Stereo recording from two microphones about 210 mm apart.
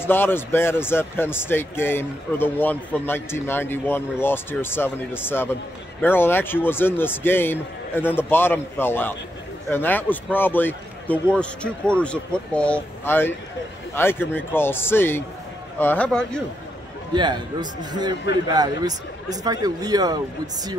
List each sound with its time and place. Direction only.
0.0 s a man's voice: 10° left (ahead or behind)
17.1 s a man's voice: 20° right (ahead or behind)